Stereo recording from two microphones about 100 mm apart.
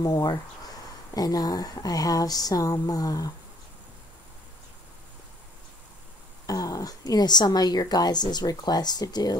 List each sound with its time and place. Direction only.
0.0 s speech: 40° left (ahead or behind)
6.4 s speech: 35° left (ahead or behind)